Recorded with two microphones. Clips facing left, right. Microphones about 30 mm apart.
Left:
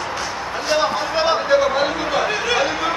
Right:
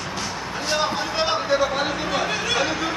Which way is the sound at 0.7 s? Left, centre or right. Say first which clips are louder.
Left 4 dB; centre.